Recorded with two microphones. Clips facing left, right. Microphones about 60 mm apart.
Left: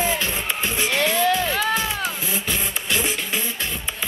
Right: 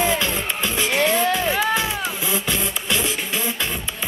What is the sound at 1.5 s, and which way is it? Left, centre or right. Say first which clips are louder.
Music: right 2 dB; centre.